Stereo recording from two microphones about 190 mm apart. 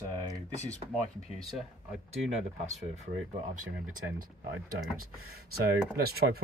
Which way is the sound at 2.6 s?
35° right (ahead or behind).